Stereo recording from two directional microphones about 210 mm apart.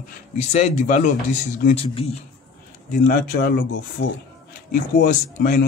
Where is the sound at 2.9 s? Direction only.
45° left (ahead or behind).